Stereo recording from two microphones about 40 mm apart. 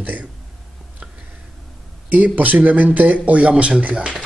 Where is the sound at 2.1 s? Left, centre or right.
Right.